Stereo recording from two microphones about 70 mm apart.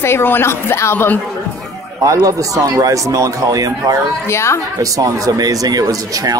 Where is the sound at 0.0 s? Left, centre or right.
Left.